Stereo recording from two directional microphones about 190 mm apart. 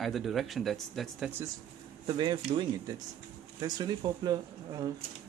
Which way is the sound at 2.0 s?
25° right (ahead or behind).